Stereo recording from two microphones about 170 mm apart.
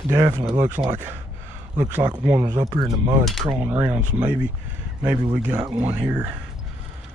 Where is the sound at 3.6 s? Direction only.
10° right (ahead or behind).